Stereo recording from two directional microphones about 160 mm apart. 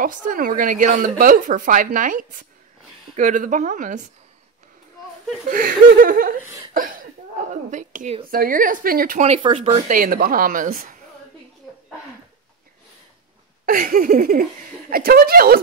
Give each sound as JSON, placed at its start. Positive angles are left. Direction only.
{"t": 0.0, "sound": "a woman's voice", "side_deg": -60}
{"t": 5.5, "sound": "a woman's voice", "side_deg": -60}
{"t": 6.4, "sound": "a sound", "side_deg": -20}
{"t": 6.7, "sound": "a woman's voice", "side_deg": -60}
{"t": 9.4, "sound": "speech", "side_deg": -40}
{"t": 9.8, "sound": "a woman's voice", "side_deg": -60}
{"t": 13.7, "sound": "a woman's voice", "side_deg": -65}